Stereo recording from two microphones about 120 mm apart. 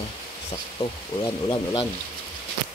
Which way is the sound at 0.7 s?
45° left (ahead or behind).